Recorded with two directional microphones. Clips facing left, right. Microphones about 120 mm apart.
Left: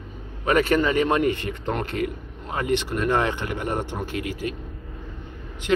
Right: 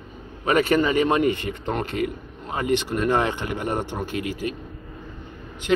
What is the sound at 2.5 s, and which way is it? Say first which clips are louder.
Speech: right 1 dB; 15° right (ahead or behind).